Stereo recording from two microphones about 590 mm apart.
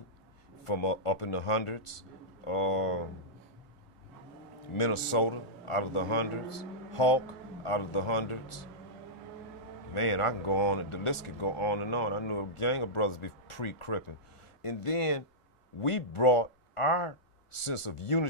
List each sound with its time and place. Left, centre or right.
0.7 s speech: left
4.7 s speech: left
9.9 s speech: left